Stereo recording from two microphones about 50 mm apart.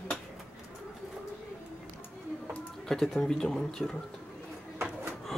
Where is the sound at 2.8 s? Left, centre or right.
Centre.